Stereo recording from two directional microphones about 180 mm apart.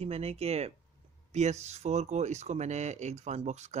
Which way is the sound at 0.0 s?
35° right (ahead or behind).